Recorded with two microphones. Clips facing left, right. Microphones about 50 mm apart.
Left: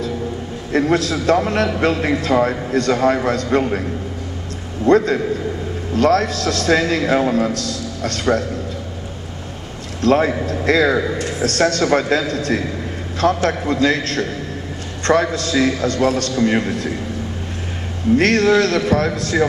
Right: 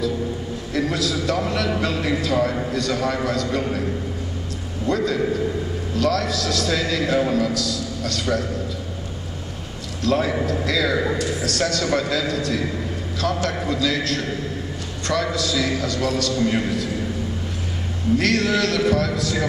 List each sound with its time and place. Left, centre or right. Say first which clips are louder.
0.7 s a man's voice: left 6 dB; left
4.8 s a man's voice: left 7 dB; left
10.0 s a man's voice: left 5 dB; left
15.3 s a man's voice: left 5 dB; left
18.1 s a man's voice: left 6 dB; left